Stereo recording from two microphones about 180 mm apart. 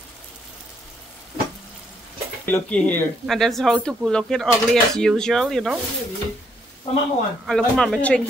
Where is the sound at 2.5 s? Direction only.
10° left (ahead or behind).